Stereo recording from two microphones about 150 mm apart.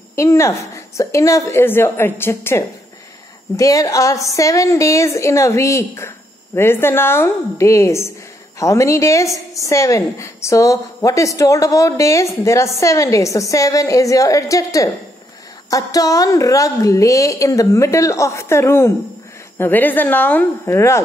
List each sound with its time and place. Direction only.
0.1 s a woman's voice: 20° left (ahead or behind)